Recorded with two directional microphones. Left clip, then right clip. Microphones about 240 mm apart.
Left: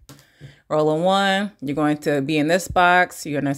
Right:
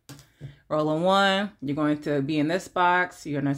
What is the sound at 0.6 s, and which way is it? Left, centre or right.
Speech, left.